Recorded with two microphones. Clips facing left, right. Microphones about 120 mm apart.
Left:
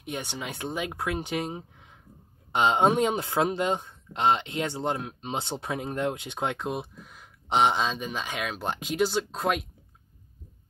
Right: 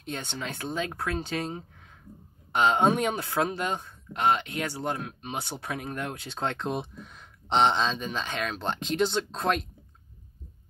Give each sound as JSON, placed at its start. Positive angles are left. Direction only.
{"t": 0.0, "sound": "speech", "side_deg": 15}